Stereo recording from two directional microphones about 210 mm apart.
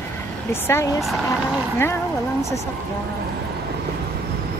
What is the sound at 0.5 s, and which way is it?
Speech, 10° left (ahead or behind).